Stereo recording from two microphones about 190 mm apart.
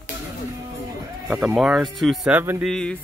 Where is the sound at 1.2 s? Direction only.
Centre (ahead or behind).